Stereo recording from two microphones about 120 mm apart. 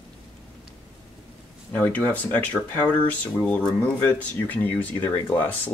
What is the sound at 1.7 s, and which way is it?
Speech, 15° left (ahead or behind).